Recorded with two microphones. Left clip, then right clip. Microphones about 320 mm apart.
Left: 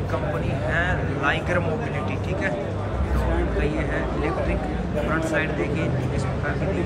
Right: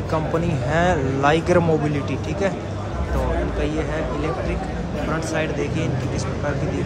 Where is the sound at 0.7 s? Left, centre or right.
Centre.